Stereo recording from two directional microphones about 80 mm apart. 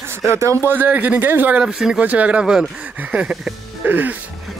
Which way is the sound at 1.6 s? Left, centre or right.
Centre.